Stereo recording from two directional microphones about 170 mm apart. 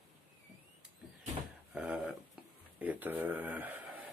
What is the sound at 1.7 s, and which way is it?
Speech, 5° right (ahead or behind).